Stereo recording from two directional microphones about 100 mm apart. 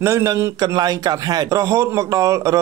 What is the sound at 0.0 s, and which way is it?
A man's voice, 30° right (ahead or behind).